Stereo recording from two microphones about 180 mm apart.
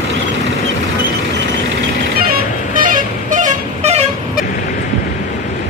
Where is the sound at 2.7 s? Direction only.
50° right (ahead or behind).